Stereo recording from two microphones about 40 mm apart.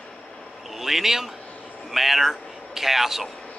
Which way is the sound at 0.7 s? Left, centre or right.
Centre.